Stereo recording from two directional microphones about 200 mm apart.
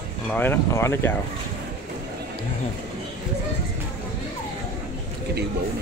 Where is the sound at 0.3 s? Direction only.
10° left (ahead or behind).